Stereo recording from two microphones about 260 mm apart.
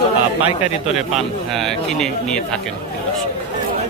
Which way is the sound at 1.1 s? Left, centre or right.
Centre.